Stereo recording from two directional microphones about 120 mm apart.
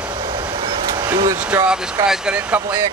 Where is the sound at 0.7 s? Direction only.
40° right (ahead or behind).